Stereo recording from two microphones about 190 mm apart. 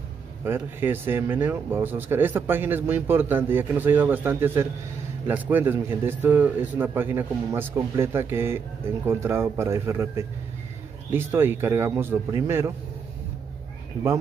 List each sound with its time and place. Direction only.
0.5 s a man's voice: 10° right (ahead or behind)